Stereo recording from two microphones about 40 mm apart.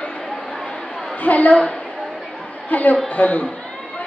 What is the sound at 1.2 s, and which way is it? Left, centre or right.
Speech, left.